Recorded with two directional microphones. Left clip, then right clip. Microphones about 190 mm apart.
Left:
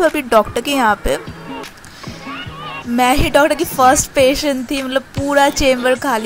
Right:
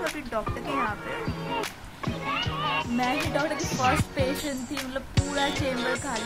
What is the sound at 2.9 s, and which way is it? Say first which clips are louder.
A woman's voice: left 14 dB; 30° left (ahead or behind).